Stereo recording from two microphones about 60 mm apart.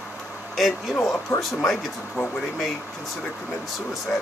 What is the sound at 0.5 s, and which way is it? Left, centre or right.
Speech, centre.